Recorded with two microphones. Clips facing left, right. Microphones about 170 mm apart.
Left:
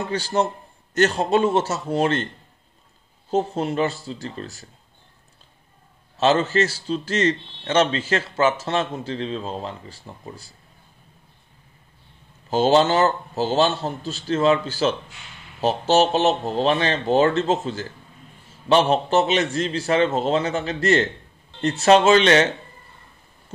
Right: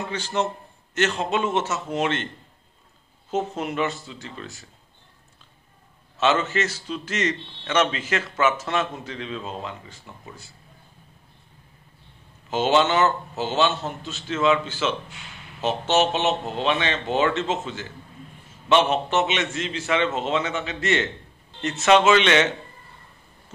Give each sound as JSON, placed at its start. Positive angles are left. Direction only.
{"t": 0.1, "sound": "a man's voice", "side_deg": 35}
{"t": 3.3, "sound": "a man's voice", "side_deg": 30}
{"t": 6.1, "sound": "a man's voice", "side_deg": 35}
{"t": 12.4, "sound": "a man's voice", "side_deg": 35}